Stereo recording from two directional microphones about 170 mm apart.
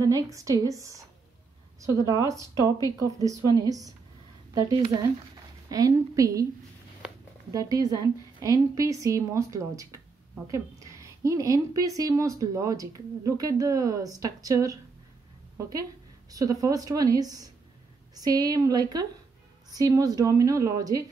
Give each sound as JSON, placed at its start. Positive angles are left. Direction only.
{"t": 0.0, "sound": "a woman's voice", "side_deg": -20}
{"t": 7.0, "sound": "a sound", "side_deg": -5}
{"t": 7.5, "sound": "a woman's voice", "side_deg": -20}
{"t": 16.3, "sound": "a woman's voice", "side_deg": -20}